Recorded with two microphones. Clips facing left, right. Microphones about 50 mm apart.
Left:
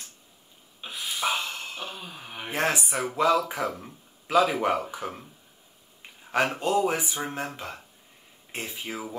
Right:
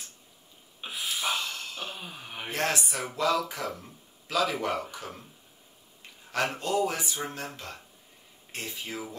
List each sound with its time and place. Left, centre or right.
0.8 s snort: centre
1.3 s a sound: centre
1.8 s gasp: centre
2.1 s a sound: centre
2.5 s speech: centre
6.6 s speech: centre